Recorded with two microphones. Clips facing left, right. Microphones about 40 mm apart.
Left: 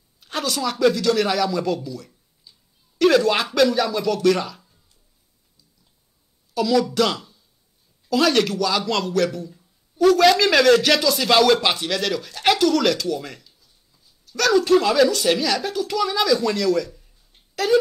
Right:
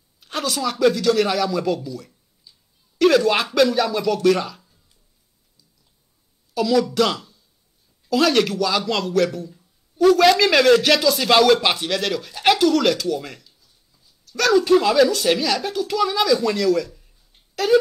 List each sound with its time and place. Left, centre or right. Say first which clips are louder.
0.2 s speech: right 1 dB; centre
6.5 s a man's voice: right 1 dB; centre